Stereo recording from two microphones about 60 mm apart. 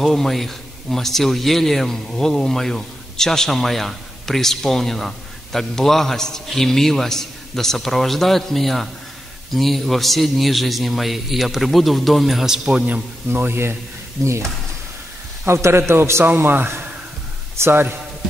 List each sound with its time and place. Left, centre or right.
0.0 s a man's voice: centre
13.3 s speech: right
14.2 s speech: right
15.4 s a man's voice: right